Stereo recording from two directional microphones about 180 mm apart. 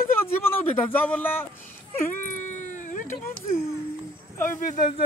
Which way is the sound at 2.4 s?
45° left (ahead or behind).